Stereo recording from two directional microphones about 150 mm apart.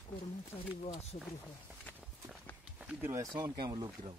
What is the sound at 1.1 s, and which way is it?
Speech, 55° left (ahead or behind).